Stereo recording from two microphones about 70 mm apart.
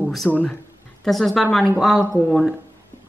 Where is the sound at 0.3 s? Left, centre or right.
Left.